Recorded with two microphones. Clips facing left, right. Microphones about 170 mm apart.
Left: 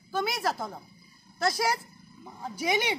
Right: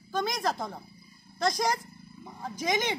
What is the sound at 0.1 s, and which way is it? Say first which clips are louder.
A woman's voice: even; 5° left (ahead or behind).